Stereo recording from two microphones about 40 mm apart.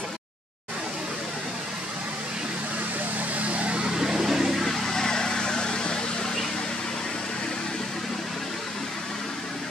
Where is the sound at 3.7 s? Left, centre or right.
Centre.